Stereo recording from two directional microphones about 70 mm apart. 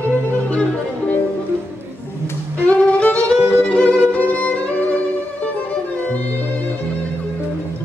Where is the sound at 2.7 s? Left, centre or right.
Left.